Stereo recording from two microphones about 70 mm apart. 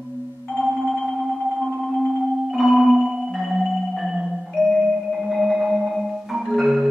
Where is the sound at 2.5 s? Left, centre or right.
Centre.